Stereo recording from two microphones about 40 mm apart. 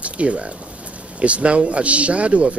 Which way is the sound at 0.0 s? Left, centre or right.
Right.